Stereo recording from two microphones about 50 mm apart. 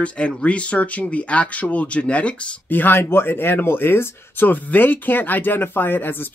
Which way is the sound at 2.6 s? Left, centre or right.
Left.